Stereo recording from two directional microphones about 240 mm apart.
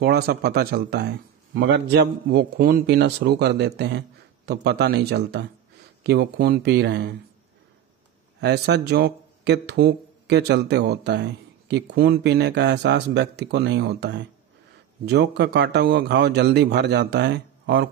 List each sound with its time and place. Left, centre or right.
0.0 s speech: right
8.4 s speech: right